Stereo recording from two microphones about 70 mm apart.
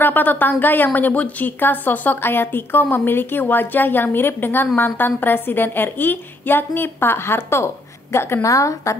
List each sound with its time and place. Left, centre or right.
0.0 s a woman's voice: left